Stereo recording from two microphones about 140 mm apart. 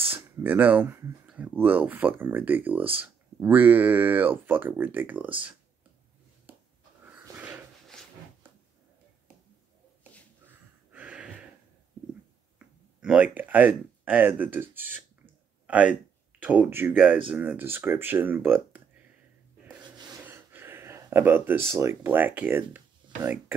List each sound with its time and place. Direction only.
0.1 s speech: 15° right (ahead or behind)
7.1 s dog: 10° right (ahead or behind)
10.4 s snort: 10° right (ahead or behind)
12.5 s speech: 10° right (ahead or behind)
20.2 s a sound: 15° right (ahead or behind)
21.6 s speech: 20° right (ahead or behind)